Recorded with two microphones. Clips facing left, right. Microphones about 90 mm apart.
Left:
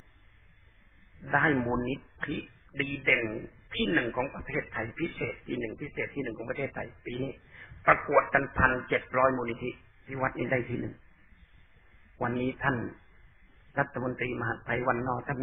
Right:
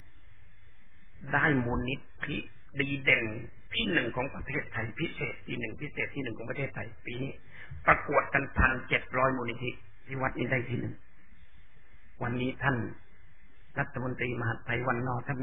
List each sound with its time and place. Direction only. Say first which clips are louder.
1.2 s a man's voice: left 1 dB; centre (ahead or behind)
2.0 s speech: left 2 dB; 25° left (ahead or behind)
2.7 s a man's voice: even; centre (ahead or behind)
3.4 s a man's voice: left 3 dB; 30° left (ahead or behind)
4.1 s a man's voice: left 2 dB; centre (ahead or behind)
5.0 s speech: left 3 dB; 25° left (ahead or behind)
5.7 s a man's voice: left 2 dB; 5° left (ahead or behind)
8.3 s speech: left 3 dB; 35° left (ahead or behind)
9.1 s a man's voice: left 2 dB; centre (ahead or behind)
12.2 s a man's voice: left 2 dB; centre (ahead or behind)